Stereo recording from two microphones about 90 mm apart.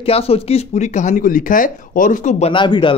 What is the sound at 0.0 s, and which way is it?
Speech, 90° left.